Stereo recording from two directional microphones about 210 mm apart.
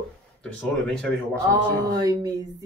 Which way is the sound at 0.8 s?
5° left (ahead or behind).